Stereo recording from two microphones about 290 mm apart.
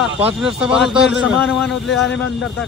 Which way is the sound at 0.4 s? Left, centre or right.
Centre.